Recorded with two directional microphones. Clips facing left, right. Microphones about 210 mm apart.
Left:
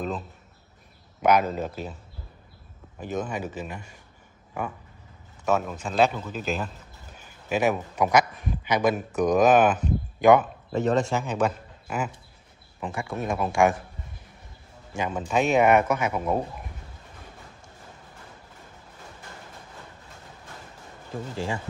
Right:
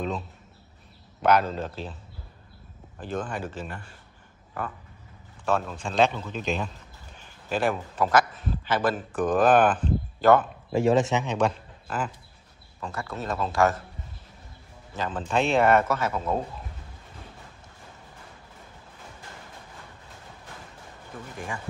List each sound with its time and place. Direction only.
1.2 s a man's voice: 10° left (ahead or behind)
3.0 s a man's voice: 10° left (ahead or behind)
5.4 s a man's voice: 10° left (ahead or behind)
10.9 s a man's voice: 5° right (ahead or behind)
11.2 s a man's voice: 5° left (ahead or behind)
15.0 s a man's voice: 10° left (ahead or behind)
21.1 s speech: 25° left (ahead or behind)